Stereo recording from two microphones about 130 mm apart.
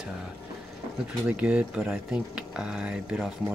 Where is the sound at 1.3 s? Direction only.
10° right (ahead or behind).